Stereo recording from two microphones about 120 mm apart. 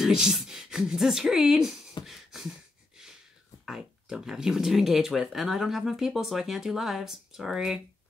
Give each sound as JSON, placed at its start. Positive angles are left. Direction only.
{"t": 0.0, "sound": "speech", "side_deg": -5}
{"t": 2.0, "sound": "beatboxing", "side_deg": 0}
{"t": 3.6, "sound": "speech", "side_deg": -5}